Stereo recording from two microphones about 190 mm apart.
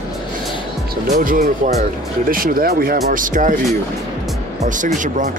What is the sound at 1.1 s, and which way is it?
Speech, 45° right (ahead or behind).